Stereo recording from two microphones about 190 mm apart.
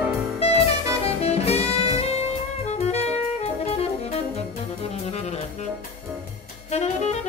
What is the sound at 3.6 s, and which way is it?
Saxophone, 30° left (ahead or behind).